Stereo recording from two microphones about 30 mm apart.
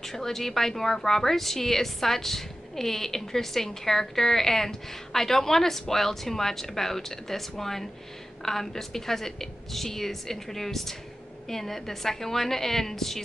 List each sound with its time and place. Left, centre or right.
0.0 s a woman's voice: centre